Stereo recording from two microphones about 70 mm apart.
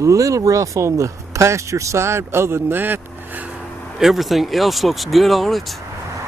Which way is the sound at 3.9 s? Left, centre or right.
Centre.